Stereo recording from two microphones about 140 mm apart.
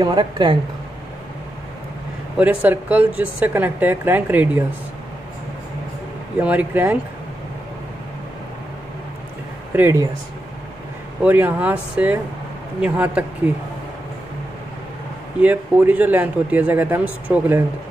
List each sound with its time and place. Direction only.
0.0 s speech: 30° right (ahead or behind)
2.3 s speech: 10° right (ahead or behind)
6.4 s speech: 10° right (ahead or behind)
9.8 s speech: 15° right (ahead or behind)
11.2 s speech: 15° right (ahead or behind)
15.4 s speech: 10° right (ahead or behind)